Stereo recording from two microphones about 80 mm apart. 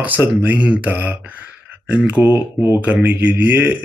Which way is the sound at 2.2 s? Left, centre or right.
Right.